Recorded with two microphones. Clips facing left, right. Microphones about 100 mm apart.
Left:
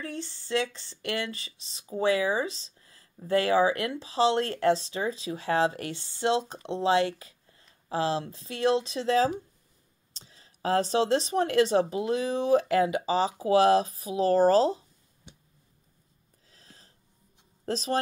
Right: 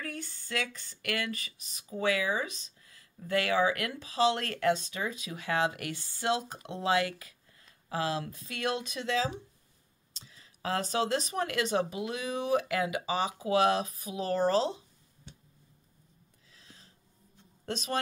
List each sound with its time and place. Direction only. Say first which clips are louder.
0.0 s speech: left 4 dB; 30° left (ahead or behind)
15.3 s a sound: even; 15° left (ahead or behind)
16.4 s gasp: left 1 dB; 40° left (ahead or behind)
17.6 s speech: left 6 dB; 35° left (ahead or behind)